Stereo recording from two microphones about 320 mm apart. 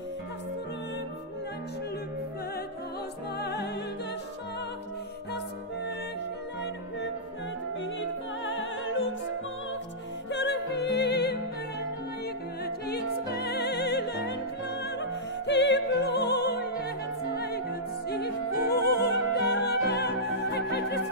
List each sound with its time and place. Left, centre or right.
3.3 s music: left
8.5 s music: left
10.3 s music: left
12.6 s music: left
18.8 s music: left
19.0 s music: left